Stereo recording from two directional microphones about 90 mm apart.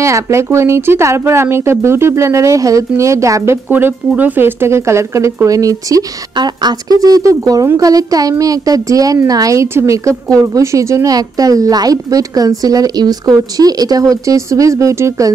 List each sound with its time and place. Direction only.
0.0 s a woman's voice: 30° right (ahead or behind)
3.6 s speech: 20° right (ahead or behind); by 6.0 s 40° right (ahead or behind)
6.3 s a woman's voice: 50° right (ahead or behind); by 15.3 s 35° right (ahead or behind)